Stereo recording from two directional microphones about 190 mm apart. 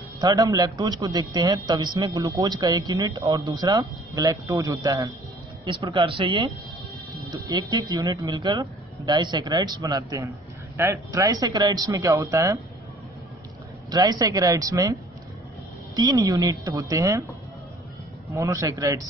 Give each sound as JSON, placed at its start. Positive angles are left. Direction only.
{"t": 0.2, "sound": "a man's voice", "side_deg": -20}
{"t": 13.8, "sound": "a man's voice", "side_deg": -20}
{"t": 16.0, "sound": "speech", "side_deg": -20}
{"t": 18.3, "sound": "speech", "side_deg": -15}